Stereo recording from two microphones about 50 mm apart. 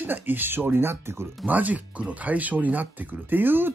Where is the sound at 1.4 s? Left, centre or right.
Right.